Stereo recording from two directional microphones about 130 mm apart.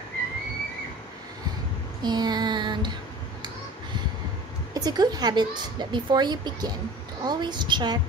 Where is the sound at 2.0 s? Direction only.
35° right (ahead or behind).